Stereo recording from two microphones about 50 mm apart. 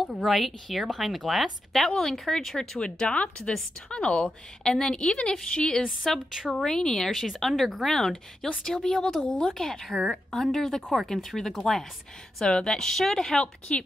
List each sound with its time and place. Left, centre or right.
0.1 s a woman's voice: centre
6.0 s a woman's voice: centre